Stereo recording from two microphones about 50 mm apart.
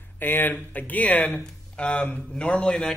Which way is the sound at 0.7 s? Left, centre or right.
Left.